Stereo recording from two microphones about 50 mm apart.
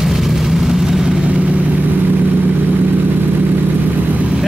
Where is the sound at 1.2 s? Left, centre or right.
Right.